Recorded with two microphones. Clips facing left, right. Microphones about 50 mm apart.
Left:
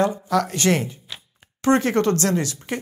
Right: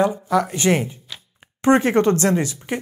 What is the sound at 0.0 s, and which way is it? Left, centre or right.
Speech, centre.